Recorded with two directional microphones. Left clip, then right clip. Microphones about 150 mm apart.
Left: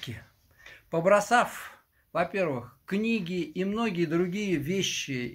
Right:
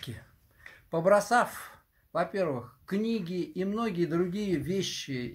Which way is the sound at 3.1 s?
5° left (ahead or behind).